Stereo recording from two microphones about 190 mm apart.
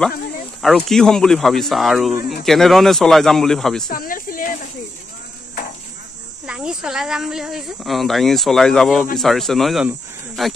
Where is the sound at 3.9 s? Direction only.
50° left (ahead or behind).